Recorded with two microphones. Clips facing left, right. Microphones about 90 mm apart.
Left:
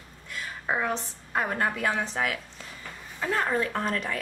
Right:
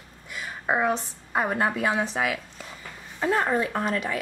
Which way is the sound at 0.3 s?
15° right (ahead or behind).